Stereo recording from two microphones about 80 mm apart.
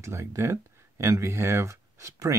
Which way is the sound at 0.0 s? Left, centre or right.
Right.